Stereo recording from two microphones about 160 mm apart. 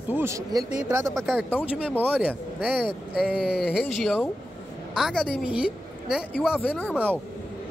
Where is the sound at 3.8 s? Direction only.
Centre (ahead or behind).